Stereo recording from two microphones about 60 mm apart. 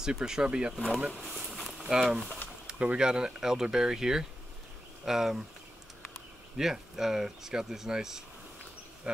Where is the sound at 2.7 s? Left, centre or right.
Centre.